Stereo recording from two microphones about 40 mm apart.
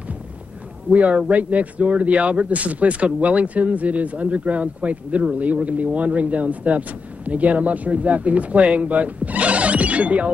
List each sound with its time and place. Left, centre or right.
0.9 s speech: right